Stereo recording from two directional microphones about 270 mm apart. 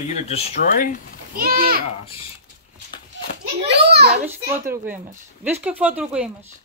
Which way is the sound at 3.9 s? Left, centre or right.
Right.